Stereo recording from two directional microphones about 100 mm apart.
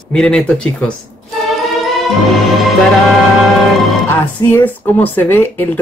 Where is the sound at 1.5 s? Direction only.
Centre (ahead or behind).